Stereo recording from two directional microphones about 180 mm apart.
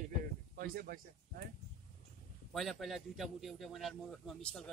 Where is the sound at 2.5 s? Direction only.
Centre (ahead or behind).